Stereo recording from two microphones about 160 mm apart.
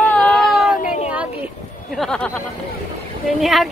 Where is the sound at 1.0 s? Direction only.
10° right (ahead or behind).